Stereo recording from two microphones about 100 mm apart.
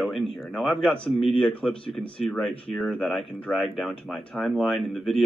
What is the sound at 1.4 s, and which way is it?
Speech, 10° left (ahead or behind).